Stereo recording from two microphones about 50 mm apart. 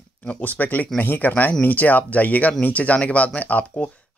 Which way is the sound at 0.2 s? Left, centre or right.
Left.